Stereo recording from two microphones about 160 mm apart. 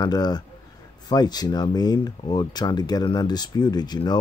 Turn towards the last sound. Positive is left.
turn(degrees=25)  # may be behind; listen again after turning